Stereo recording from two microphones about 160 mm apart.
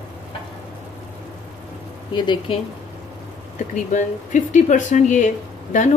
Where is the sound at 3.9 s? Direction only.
50° left (ahead or behind).